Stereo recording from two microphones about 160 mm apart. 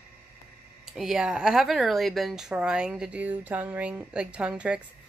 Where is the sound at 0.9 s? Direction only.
5° right (ahead or behind).